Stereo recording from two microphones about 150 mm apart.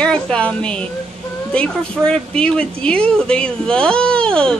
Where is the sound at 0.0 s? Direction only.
5° left (ahead or behind).